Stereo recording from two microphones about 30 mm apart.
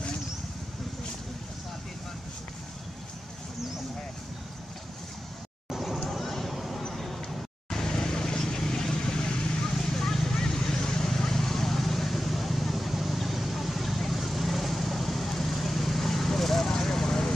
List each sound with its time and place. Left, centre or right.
6.0 s vehicle: centre
6.5 s a sound: centre
7.7 s vehicle: left
9.7 s vehicle: centre